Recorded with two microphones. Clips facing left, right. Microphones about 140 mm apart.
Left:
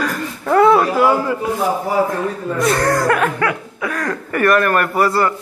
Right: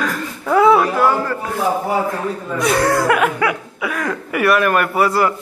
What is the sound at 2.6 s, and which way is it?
Chuckle, 5° right (ahead or behind).